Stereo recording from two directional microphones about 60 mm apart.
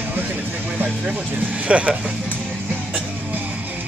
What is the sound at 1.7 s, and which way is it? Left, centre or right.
Speech, right.